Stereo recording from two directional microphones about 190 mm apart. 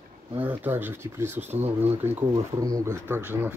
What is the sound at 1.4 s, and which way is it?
Speech, 35° right (ahead or behind).